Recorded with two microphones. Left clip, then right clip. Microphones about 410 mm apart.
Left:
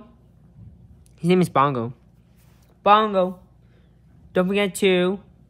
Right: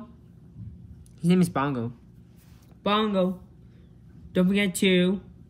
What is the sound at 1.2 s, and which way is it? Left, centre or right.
Speech, left.